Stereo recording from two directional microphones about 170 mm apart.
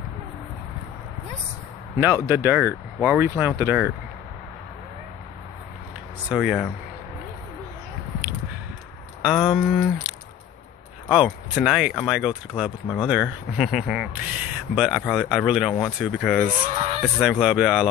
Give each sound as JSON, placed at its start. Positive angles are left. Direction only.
{"t": 2.0, "sound": "speech", "side_deg": -15}
{"t": 6.2, "sound": "speech", "side_deg": 0}
{"t": 9.2, "sound": "speech", "side_deg": 0}
{"t": 16.7, "sound": "speech", "side_deg": -40}
{"t": 17.0, "sound": "speech", "side_deg": -5}